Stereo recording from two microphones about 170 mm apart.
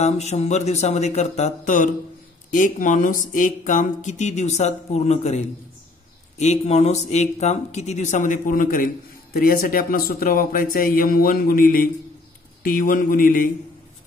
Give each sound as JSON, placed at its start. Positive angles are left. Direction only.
{"t": 0.0, "sound": "speech", "side_deg": 40}
{"t": 6.4, "sound": "speech", "side_deg": 40}